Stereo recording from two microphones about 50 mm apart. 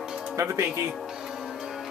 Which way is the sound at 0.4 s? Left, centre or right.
Right.